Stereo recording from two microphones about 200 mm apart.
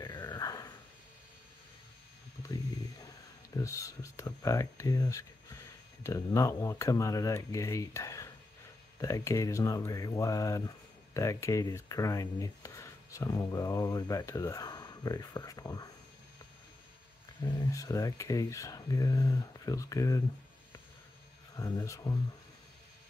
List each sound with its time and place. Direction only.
0.0 s a sound: 20° left (ahead or behind)
3.5 s speech: 15° left (ahead or behind)
17.5 s speech: 15° left (ahead or behind)
21.5 s speech: 15° left (ahead or behind)